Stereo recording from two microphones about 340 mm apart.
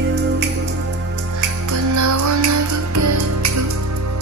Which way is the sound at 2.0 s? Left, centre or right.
Right.